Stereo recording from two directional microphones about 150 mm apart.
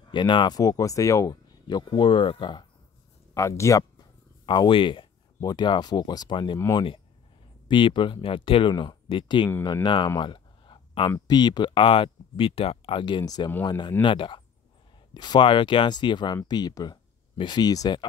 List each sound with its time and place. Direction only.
0.1 s speech: 30° left (ahead or behind)
3.3 s speech: 20° left (ahead or behind)
4.5 s speech: 35° left (ahead or behind)
7.6 s speech: 35° left (ahead or behind)
9.8 s a sound: 30° left (ahead or behind)
11.1 s speech: 30° left (ahead or behind)